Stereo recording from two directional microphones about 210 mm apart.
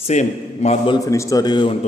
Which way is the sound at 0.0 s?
30° left (ahead or behind).